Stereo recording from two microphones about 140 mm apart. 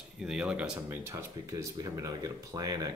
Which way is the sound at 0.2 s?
5° right (ahead or behind).